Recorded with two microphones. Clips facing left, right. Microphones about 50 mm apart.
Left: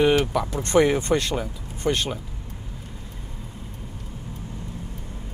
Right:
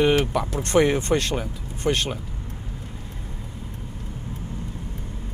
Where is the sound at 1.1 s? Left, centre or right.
Right.